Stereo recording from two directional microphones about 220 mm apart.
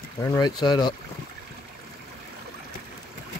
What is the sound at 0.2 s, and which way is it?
Speech, 15° left (ahead or behind).